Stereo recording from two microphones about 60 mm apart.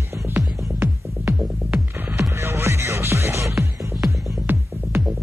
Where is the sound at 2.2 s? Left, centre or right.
Right.